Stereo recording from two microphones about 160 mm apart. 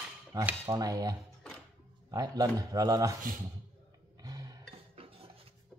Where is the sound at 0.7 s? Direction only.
25° right (ahead or behind).